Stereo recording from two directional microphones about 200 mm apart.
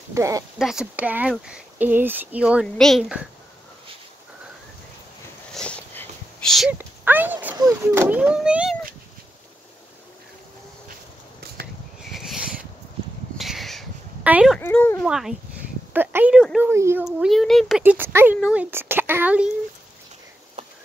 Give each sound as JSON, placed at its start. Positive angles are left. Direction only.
{"t": 0.1, "sound": "speech", "side_deg": -15}
{"t": 0.6, "sound": "speech", "side_deg": 0}
{"t": 5.5, "sound": "a sound", "side_deg": 5}
{"t": 12.1, "sound": "a sound", "side_deg": 0}
{"t": 14.6, "sound": "speech", "side_deg": 10}
{"t": 15.0, "sound": "speech", "side_deg": 0}
{"t": 17.0, "sound": "speech", "side_deg": 0}